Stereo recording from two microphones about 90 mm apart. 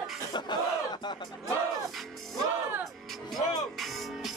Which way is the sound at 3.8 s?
Centre (ahead or behind).